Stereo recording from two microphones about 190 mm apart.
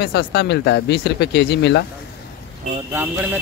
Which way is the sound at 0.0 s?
60° left (ahead or behind).